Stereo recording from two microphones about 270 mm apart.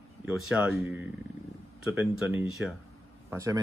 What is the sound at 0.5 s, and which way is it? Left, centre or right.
Speech, centre.